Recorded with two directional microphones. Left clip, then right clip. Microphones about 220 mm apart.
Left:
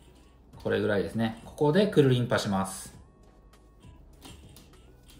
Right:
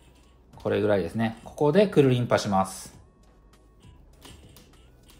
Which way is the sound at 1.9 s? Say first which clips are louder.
Right 3 dB; 30° right (ahead or behind).